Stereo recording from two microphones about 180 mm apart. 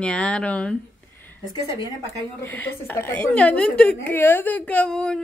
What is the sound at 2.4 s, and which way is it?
Speech, 10° left (ahead or behind).